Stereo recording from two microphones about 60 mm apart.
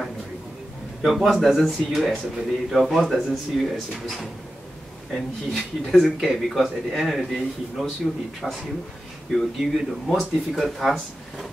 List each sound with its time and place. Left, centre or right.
1.0 s speech: centre